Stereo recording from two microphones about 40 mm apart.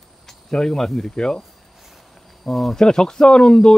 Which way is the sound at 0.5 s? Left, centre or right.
Centre.